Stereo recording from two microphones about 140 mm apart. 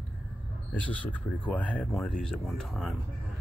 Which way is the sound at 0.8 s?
10° left (ahead or behind).